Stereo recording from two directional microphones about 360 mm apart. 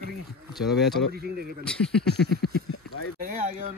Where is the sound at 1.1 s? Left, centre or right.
Right.